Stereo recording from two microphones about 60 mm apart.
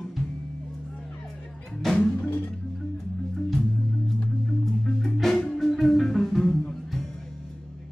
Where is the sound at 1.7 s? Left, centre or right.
Centre.